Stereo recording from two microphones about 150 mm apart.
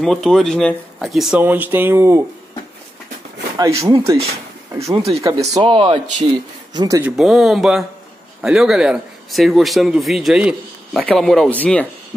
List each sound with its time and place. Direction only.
0.0 s a man's voice: 5° left (ahead or behind)
1.4 s speech: 10° right (ahead or behind)
3.5 s speech: 20° right (ahead or behind)
7.0 s a man's voice: 5° right (ahead or behind); by 11.8 s 10° left (ahead or behind)